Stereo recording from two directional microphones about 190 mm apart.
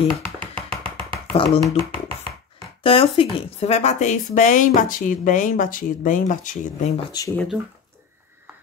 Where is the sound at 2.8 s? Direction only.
30° left (ahead or behind).